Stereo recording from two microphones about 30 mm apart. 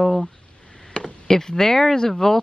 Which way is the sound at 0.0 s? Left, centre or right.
Centre.